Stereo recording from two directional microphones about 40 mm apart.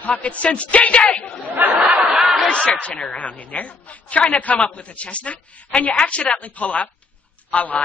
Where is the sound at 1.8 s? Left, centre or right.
Right.